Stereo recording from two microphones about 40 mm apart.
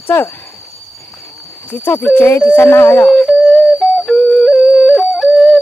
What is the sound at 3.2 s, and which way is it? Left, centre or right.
Whistle, centre.